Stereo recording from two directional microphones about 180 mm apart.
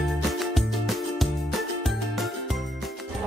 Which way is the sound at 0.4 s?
Centre (ahead or behind).